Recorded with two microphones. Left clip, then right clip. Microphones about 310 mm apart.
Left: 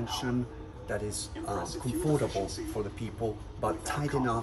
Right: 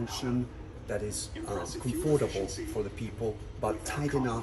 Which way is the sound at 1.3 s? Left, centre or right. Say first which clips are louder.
Left 1 dB; left.